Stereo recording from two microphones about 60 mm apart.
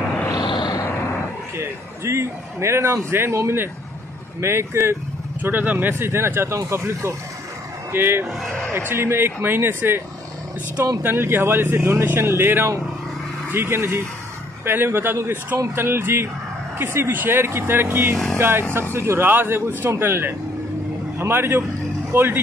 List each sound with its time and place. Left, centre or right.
0.3 s a sound: left
2.0 s speech: right
5.4 s speech: right
7.9 s speech: right